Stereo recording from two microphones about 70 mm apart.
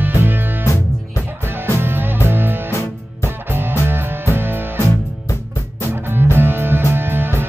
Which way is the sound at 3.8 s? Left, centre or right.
Right.